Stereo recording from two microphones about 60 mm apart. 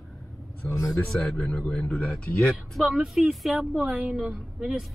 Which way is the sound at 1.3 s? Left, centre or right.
Left.